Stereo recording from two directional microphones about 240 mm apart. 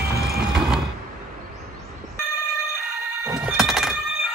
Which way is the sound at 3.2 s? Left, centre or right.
Centre.